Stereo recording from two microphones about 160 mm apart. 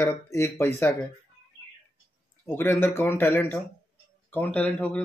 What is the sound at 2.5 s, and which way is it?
Speech, 15° left (ahead or behind).